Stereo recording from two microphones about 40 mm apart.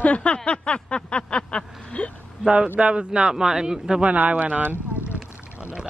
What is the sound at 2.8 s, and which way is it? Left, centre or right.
A man's voice, right.